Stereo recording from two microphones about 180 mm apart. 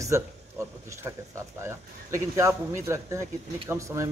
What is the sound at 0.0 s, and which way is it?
Speech, 15° right (ahead or behind).